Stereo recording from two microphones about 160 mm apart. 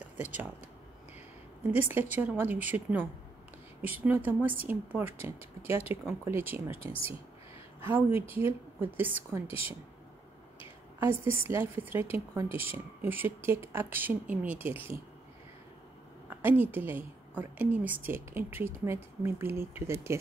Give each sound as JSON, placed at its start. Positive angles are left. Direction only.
{"t": 0.2, "sound": "a woman's voice", "side_deg": -10}
{"t": 1.7, "sound": "a woman's voice", "side_deg": -10}
{"t": 6.8, "sound": "speech", "side_deg": 35}
{"t": 7.8, "sound": "a woman's voice", "side_deg": -15}
{"t": 9.5, "sound": "speech", "side_deg": 35}
{"t": 11.0, "sound": "a woman's voice", "side_deg": -15}
{"t": 16.3, "sound": "a woman's voice", "side_deg": -10}